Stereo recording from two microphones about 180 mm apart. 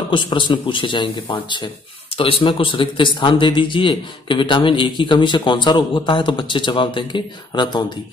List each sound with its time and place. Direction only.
0.1 s a man's voice: 25° left (ahead or behind)